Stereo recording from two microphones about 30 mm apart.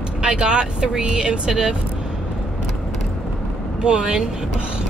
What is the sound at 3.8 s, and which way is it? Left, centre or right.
Speech, right.